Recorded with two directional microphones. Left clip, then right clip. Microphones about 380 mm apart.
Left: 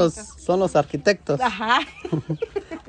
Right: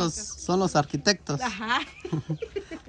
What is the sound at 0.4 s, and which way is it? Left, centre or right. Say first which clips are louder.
Speech: left 5 dB; centre.